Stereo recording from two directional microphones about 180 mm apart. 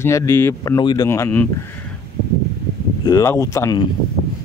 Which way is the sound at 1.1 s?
10° left (ahead or behind).